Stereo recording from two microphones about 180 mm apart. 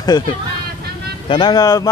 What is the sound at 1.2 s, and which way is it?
Speech, 25° left (ahead or behind).